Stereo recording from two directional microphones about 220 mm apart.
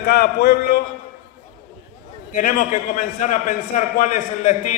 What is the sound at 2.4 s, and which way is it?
A man's voice, 35° left (ahead or behind).